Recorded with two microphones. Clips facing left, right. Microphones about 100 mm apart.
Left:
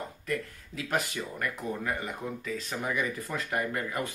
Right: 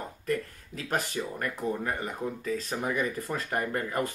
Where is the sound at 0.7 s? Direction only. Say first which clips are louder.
Even; 40° right (ahead or behind).